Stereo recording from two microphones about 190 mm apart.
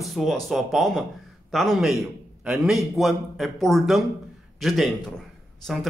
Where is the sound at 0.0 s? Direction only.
Centre (ahead or behind).